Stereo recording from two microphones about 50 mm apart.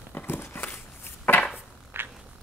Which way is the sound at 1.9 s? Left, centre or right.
Right.